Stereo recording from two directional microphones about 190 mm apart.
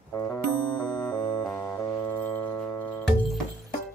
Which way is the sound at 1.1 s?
20° left (ahead or behind).